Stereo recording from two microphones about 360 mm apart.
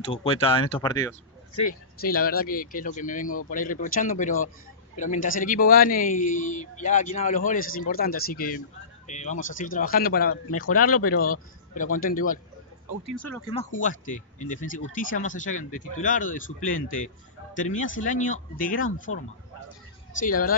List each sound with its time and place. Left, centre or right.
0.0 s speech: centre
2.0 s a man's voice: left
10.5 s speech: left
11.0 s a man's voice: left
13.0 s speech: centre
13.6 s a man's voice: left
19.1 s speech: left
20.2 s a man's voice: left